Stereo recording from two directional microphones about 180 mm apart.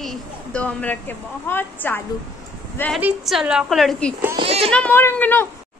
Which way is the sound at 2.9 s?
5° right (ahead or behind).